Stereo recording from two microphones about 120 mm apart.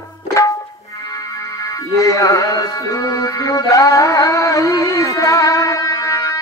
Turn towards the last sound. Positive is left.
turn(degrees=25)  # may be behind; listen again after turning